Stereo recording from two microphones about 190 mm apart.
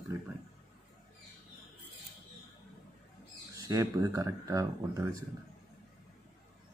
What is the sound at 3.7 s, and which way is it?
Speech, 15° right (ahead or behind).